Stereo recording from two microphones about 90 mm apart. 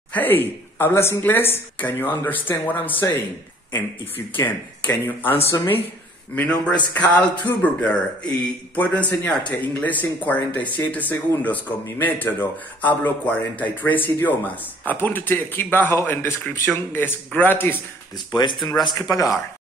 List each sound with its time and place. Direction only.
0.1 s speech: 20° left (ahead or behind)
4.5 s speech: 20° left (ahead or behind)
18.1 s speech: 55° left (ahead or behind)
18.8 s speech: 45° left (ahead or behind)